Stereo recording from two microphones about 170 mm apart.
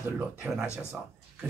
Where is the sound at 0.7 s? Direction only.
5° right (ahead or behind).